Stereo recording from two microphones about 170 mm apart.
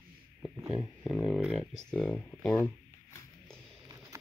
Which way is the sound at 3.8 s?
20° right (ahead or behind).